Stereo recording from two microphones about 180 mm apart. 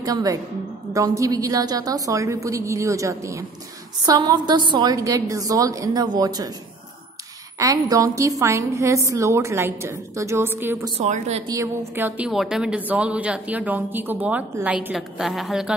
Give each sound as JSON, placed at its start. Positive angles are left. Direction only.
{"t": 0.0, "sound": "a woman's voice", "side_deg": -20}
{"t": 7.5, "sound": "a woman's voice", "side_deg": -20}
{"t": 11.0, "sound": "speech", "side_deg": -40}
{"t": 11.4, "sound": "a woman's voice", "side_deg": -15}